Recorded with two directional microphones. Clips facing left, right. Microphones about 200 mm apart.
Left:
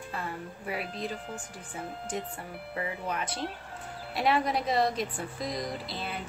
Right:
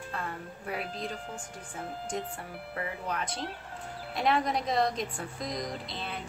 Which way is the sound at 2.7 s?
5° left (ahead or behind).